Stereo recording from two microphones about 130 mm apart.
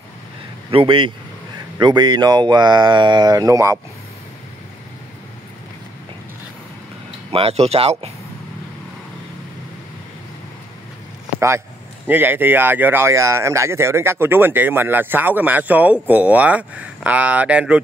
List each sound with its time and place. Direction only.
0.7 s speech: 40° right (ahead or behind); by 3.8 s 25° right (ahead or behind)
7.2 s speech: 45° right (ahead or behind)
11.3 s a man's voice: 20° right (ahead or behind)